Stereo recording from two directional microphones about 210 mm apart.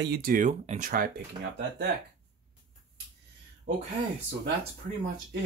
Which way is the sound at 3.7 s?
35° right (ahead or behind).